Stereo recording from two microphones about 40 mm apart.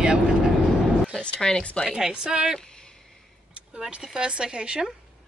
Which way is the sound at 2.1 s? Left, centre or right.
Centre.